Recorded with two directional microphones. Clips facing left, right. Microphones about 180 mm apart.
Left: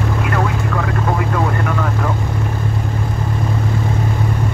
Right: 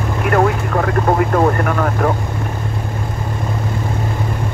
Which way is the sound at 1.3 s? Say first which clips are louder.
Right 4 dB; 50° right (ahead or behind).